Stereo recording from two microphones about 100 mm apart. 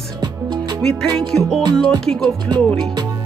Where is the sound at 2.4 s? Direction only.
45° right (ahead or behind).